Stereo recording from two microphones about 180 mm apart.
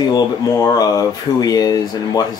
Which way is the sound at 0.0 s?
20° left (ahead or behind).